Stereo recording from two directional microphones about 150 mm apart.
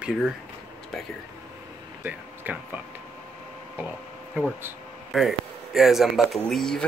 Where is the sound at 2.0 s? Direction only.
10° right (ahead or behind).